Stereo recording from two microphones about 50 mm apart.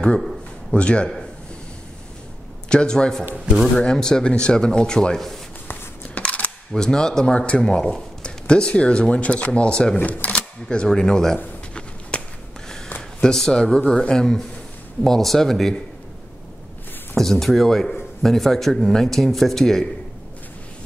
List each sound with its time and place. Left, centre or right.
0.7 s speech: left
2.7 s speech: centre
6.1 s a sound: left
6.7 s speech: centre
10.3 s camera: centre
10.9 s speech: centre
12.1 s a sound: left
13.2 s speech: centre
17.1 s speech: centre